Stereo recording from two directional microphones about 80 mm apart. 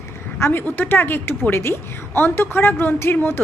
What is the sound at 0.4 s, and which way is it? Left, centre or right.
A woman's voice, left.